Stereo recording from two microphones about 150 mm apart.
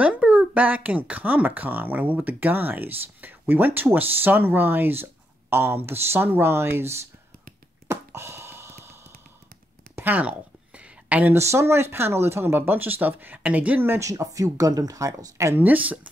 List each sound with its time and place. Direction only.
0.0 s speech: 10° right (ahead or behind)
7.9 s a sound: 20° right (ahead or behind)
9.9 s speech: 10° right (ahead or behind)